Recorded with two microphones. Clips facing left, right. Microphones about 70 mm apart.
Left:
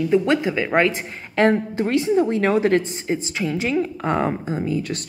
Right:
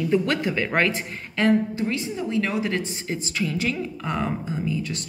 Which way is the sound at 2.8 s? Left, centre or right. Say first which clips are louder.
Left 6 dB; left.